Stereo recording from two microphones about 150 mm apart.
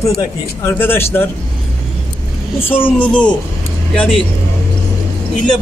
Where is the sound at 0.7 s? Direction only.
15° left (ahead or behind).